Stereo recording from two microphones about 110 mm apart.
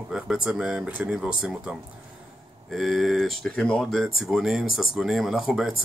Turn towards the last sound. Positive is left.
turn(degrees=-5)  # may be behind; listen again after turning